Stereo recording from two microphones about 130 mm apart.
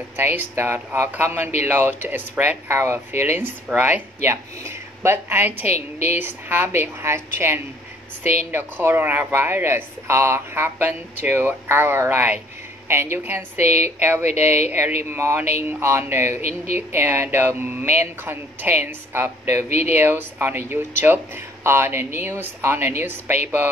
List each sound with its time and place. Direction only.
0.2 s speech: 15° right (ahead or behind)
5.7 s a woman's voice: 55° left (ahead or behind)
6.0 s speech: 15° right (ahead or behind)
13.6 s a woman's voice: 60° left (ahead or behind)
13.9 s speech: 15° right (ahead or behind)